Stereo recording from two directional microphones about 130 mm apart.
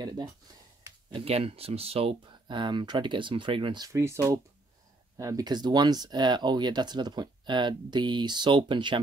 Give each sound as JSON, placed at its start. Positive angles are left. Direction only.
{"t": 1.1, "sound": "speech", "side_deg": -50}